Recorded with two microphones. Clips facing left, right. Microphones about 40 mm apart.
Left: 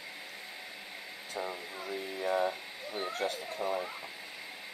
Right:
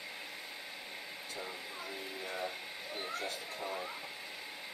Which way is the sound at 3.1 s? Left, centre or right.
Left.